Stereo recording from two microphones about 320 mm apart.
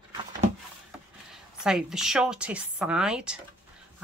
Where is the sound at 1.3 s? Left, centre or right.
Centre.